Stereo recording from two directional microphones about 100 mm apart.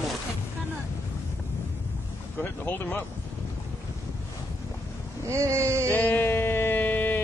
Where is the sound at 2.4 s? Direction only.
20° left (ahead or behind).